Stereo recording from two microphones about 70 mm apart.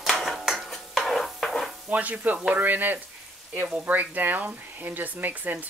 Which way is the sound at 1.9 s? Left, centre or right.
Right.